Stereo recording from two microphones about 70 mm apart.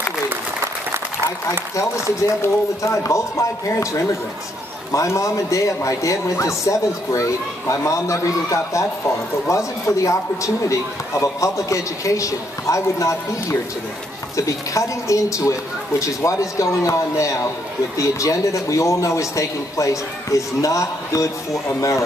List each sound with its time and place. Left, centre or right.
1.8 s a man's voice: left